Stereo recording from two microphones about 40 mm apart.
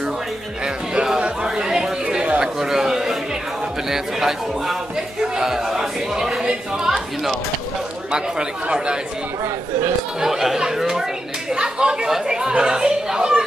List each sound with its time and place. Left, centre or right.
1.2 s chatter: right
3.9 s speech: centre
8.1 s speech: right
10.2 s speech: centre